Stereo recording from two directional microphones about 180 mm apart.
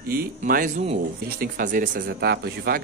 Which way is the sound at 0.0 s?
55° right (ahead or behind).